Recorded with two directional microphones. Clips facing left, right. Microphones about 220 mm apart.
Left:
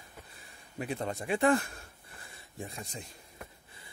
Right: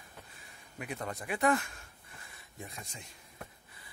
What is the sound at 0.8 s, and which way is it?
Speech, 30° left (ahead or behind).